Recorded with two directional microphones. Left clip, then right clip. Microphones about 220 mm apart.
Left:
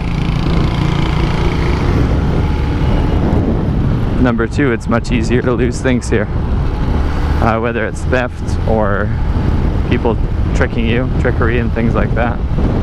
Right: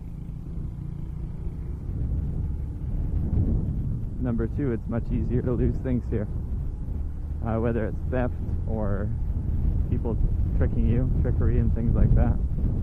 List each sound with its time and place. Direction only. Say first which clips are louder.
4.2 s speech: left 15 dB; 10° left (ahead or behind)
7.4 s speech: left 12 dB; 10° left (ahead or behind)
10.6 s speech: left 14 dB; 10° left (ahead or behind)